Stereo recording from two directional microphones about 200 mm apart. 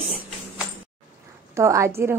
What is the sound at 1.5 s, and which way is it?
Speech, 15° right (ahead or behind).